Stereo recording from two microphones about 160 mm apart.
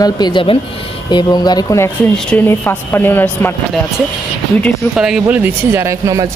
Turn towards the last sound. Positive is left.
turn(degrees=-20)  # may be behind; listen again after turning